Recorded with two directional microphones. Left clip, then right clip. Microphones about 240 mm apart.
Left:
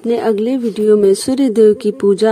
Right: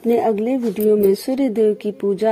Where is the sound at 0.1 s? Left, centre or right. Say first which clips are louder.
Left 2 dB; centre.